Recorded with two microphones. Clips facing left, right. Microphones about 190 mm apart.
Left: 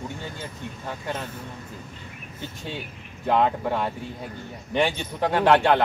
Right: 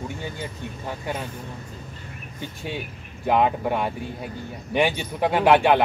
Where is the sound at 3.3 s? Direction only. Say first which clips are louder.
Right 1 dB; 10° right (ahead or behind).